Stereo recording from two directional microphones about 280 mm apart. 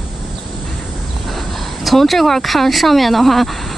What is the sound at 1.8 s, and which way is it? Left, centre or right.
Speech, centre.